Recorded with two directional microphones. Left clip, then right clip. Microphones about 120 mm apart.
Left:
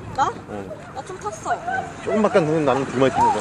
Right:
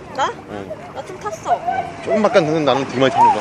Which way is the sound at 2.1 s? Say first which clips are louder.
Right 4 dB; 90° left.